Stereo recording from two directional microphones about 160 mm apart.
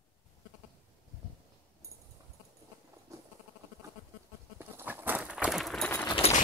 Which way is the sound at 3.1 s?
20° right (ahead or behind).